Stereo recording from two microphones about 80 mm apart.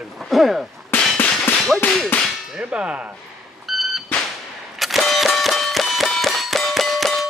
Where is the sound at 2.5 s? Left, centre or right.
Centre.